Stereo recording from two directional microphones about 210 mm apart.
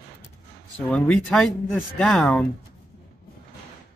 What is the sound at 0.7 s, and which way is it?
Speech, 5° left (ahead or behind).